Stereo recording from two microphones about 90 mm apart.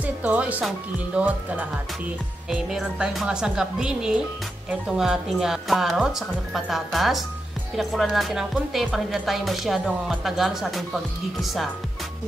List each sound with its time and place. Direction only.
0.0 s a woman's voice: 15° right (ahead or behind); by 11.7 s centre (ahead or behind)